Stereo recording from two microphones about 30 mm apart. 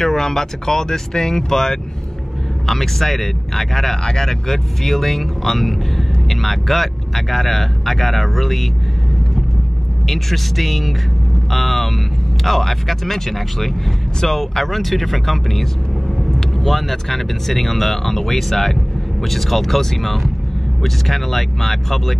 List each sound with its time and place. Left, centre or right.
0.0 s speech: centre
4.0 s speech: centre
10.0 s speech: centre